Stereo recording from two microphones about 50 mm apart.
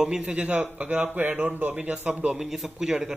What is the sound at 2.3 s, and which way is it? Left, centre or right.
Speech, centre.